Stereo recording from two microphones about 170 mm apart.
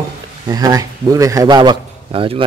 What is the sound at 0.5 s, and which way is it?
A man's voice, 20° right (ahead or behind).